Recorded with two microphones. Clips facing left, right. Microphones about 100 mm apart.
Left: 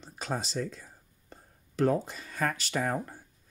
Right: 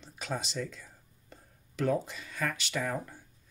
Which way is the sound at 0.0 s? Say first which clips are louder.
Left 2 dB; 40° left (ahead or behind).